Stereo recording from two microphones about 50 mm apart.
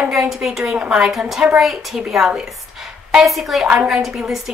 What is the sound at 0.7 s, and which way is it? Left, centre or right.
Speech, right.